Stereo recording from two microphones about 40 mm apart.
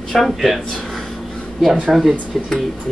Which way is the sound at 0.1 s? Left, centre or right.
Centre.